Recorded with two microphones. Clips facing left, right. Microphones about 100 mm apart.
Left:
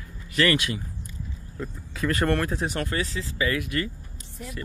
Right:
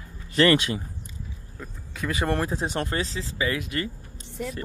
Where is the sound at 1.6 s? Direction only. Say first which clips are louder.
Left 4 dB; 5° right (ahead or behind); by 3.8 s 25° right (ahead or behind).